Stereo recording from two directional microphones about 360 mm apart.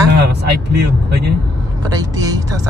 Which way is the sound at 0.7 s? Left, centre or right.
Right.